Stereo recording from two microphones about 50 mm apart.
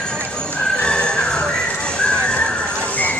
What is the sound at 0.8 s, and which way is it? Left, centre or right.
Music, centre.